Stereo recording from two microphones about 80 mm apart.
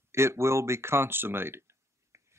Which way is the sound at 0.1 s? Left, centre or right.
Right.